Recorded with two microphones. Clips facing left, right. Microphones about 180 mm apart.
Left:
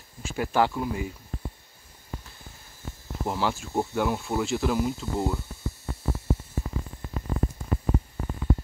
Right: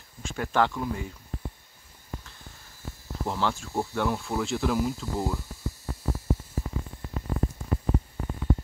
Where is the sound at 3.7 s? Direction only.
20° left (ahead or behind).